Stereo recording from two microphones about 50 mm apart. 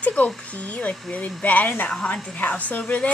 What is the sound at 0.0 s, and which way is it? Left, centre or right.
Speech, left.